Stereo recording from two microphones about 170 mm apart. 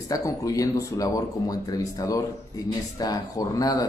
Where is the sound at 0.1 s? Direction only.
20° left (ahead or behind).